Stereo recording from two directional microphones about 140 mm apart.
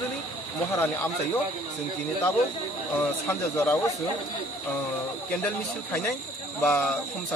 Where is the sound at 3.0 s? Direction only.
15° left (ahead or behind).